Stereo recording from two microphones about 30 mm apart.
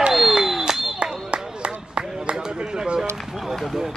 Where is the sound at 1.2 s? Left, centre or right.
Right.